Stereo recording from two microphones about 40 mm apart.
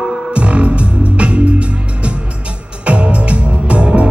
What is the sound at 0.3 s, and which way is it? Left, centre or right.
Music, right.